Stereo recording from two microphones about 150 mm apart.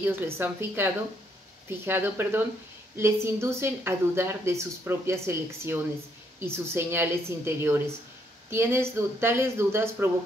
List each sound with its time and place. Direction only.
0.0 s speech: 15° right (ahead or behind)